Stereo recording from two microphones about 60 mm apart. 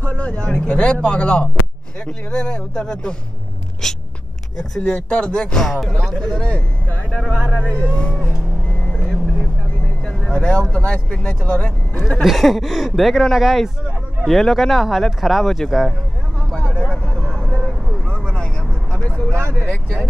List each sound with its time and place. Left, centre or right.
0.0 s a man's voice: left
6.3 s speech: left
7.1 s a man's voice: centre
10.0 s vehicle: centre
10.7 s a man's voice: centre
12.2 s speech: centre
16.5 s vehicle: centre
19.0 s a man's voice: centre